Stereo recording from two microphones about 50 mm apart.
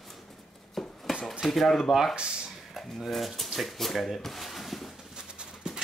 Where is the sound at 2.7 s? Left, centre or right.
Centre.